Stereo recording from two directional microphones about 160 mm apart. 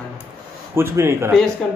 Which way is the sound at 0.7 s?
15° right (ahead or behind).